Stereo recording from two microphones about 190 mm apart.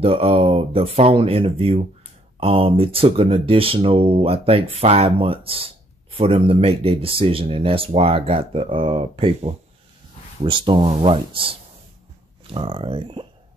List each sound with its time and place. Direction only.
0.0 s speech: 30° right (ahead or behind)